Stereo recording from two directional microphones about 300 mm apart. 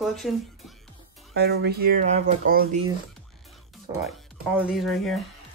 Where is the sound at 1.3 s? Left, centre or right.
Right.